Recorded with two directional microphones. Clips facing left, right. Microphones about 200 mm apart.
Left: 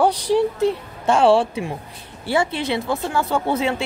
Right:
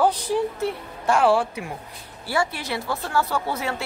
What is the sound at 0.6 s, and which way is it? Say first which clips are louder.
A woman's voice: left 7 dB; 20° left (ahead or behind).